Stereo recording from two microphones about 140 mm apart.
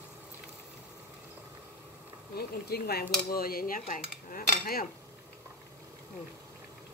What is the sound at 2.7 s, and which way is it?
Cutlery, 90° left.